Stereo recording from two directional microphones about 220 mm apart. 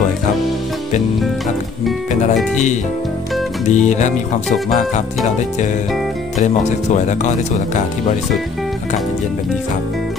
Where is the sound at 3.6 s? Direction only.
30° left (ahead or behind).